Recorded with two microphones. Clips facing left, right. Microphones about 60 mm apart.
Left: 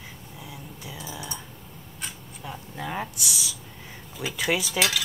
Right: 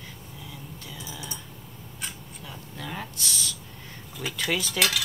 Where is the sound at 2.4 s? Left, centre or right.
Left.